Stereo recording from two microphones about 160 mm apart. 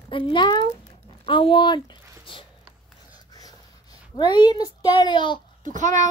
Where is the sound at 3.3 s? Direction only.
25° left (ahead or behind).